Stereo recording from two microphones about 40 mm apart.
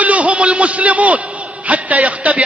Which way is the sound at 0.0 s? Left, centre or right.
Right.